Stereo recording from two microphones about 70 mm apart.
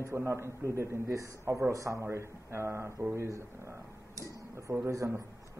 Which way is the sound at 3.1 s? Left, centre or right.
Right.